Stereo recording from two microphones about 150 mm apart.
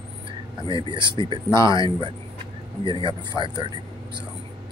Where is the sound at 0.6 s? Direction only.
35° right (ahead or behind).